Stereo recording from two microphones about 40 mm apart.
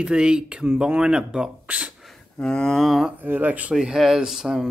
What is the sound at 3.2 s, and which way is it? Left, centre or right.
Speech, right.